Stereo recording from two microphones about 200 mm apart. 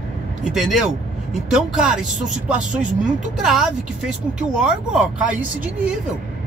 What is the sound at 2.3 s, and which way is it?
Speech, 40° right (ahead or behind).